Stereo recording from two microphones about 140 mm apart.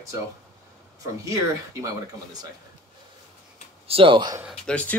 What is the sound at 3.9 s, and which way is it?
Speech, 35° right (ahead or behind).